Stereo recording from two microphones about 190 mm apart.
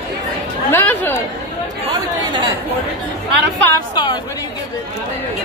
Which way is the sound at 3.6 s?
20° left (ahead or behind).